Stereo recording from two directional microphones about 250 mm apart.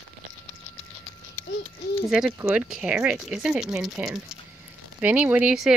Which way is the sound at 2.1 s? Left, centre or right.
Centre.